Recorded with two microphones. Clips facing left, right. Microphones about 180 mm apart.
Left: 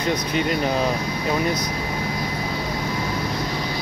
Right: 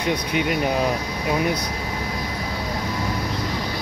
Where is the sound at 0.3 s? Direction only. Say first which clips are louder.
Even; 10° right (ahead or behind).